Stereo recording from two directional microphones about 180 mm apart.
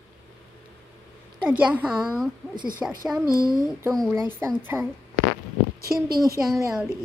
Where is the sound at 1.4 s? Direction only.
10° right (ahead or behind).